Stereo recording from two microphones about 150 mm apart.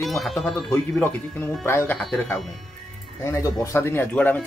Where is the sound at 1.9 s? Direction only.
5° left (ahead or behind).